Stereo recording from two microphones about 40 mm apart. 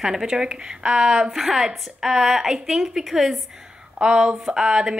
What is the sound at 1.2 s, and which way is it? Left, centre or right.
A woman's voice, centre.